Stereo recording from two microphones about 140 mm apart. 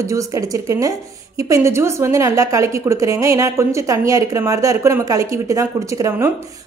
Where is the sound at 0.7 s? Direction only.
25° right (ahead or behind).